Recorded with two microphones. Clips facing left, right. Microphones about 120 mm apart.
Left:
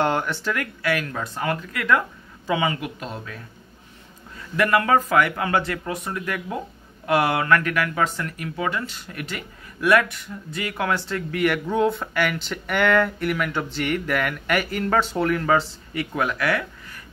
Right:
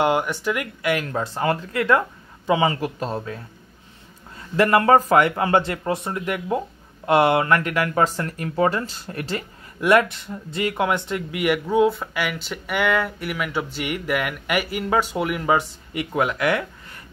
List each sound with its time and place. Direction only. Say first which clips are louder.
0.0 s speech: right 2 dB; 10° right (ahead or behind)
7.9 s speech: right 3 dB; 35° right (ahead or behind)